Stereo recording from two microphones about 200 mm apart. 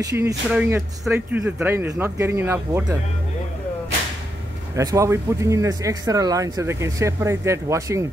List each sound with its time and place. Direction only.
0.0 s speech: 15° right (ahead or behind)
4.7 s speech: 15° right (ahead or behind)